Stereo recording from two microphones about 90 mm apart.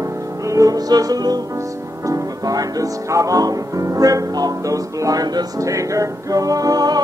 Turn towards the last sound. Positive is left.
turn(degrees=-45)  # may be behind; listen again after turning